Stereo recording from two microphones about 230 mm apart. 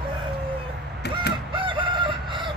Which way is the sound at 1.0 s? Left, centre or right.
Left.